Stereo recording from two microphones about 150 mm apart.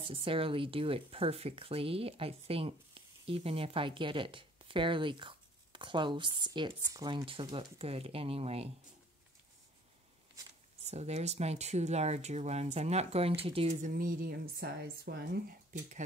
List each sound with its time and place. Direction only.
0.0 s speech: 35° right (ahead or behind)
10.8 s speech: 45° right (ahead or behind)
13.7 s speech: 60° right (ahead or behind); by 15.8 s 90° right